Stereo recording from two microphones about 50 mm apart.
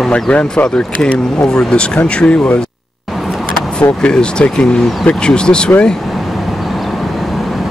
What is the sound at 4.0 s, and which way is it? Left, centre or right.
Speech, centre.